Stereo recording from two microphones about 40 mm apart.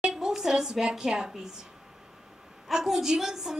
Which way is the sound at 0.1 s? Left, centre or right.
Centre.